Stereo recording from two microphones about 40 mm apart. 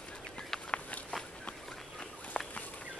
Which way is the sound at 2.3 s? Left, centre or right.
Centre.